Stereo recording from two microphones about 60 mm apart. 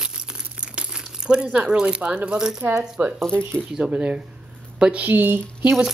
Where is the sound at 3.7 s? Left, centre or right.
Centre.